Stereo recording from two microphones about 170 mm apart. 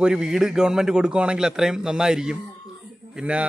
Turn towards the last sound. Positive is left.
turn(degrees=-5)  # may be behind; listen again after turning